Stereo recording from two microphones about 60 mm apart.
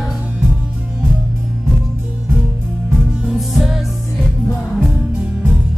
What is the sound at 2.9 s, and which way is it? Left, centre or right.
Music, centre.